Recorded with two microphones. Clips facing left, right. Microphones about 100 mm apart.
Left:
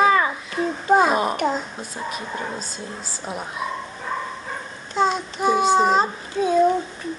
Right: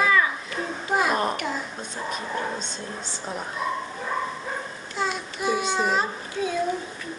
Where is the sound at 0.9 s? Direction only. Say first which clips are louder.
Left 6 dB; 30° left (ahead or behind).